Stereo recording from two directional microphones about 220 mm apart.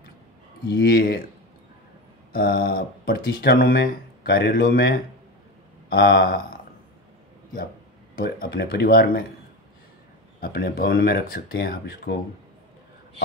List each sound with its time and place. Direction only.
0.7 s speech: 45° left (ahead or behind)
2.3 s speech: 45° left (ahead or behind)
8.2 s speech: 45° left (ahead or behind)
10.4 s speech: 40° left (ahead or behind)